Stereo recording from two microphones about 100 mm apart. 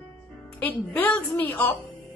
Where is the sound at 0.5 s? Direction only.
20° left (ahead or behind).